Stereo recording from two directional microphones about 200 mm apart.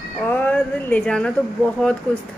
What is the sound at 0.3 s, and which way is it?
Speech, 10° left (ahead or behind).